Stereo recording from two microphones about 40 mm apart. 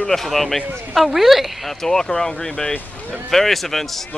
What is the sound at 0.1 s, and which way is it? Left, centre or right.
Speech, centre.